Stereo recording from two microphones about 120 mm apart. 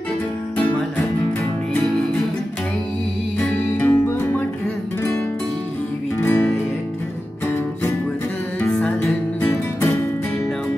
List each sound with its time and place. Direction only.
3.3 s music: 15° left (ahead or behind)
6.1 s music: 20° left (ahead or behind)
8.5 s music: 10° left (ahead or behind)